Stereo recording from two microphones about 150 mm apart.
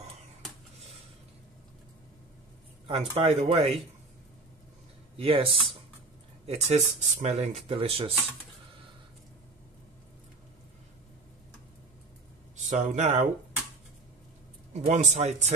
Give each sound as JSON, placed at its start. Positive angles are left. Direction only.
{"t": 3.2, "sound": "speech", "side_deg": -40}
{"t": 5.1, "sound": "speech", "side_deg": -40}
{"t": 12.5, "sound": "speech", "side_deg": -55}
{"t": 14.7, "sound": "speech", "side_deg": -50}